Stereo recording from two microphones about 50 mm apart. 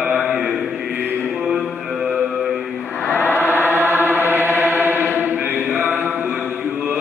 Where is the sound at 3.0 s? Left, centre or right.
Left.